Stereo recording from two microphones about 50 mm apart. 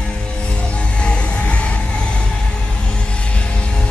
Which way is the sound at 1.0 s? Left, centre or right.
Left.